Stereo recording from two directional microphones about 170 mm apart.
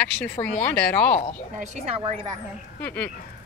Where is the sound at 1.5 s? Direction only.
45° right (ahead or behind).